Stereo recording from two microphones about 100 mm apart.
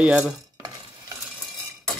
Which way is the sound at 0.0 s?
10° right (ahead or behind).